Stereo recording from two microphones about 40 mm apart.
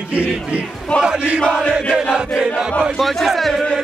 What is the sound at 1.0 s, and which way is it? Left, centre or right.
Battle cry, right.